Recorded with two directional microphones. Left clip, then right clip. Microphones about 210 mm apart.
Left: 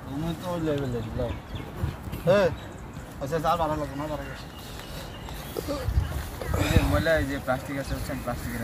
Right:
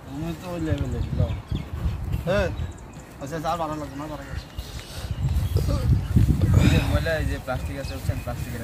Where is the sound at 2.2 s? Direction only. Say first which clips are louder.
Left 3 dB; 15° left (ahead or behind).